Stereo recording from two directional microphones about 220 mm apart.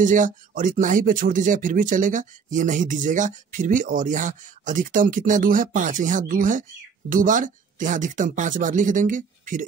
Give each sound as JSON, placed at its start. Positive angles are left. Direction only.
{"t": 0.0, "sound": "speech", "side_deg": -35}